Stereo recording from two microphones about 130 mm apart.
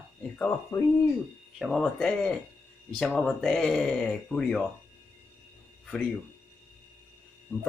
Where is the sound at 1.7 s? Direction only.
10° left (ahead or behind).